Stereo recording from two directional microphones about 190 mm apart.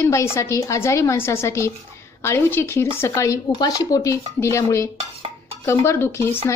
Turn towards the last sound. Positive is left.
turn(degrees=15)  # may be behind; listen again after turning